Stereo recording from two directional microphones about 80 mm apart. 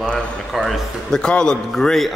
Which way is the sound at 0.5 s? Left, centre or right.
Centre.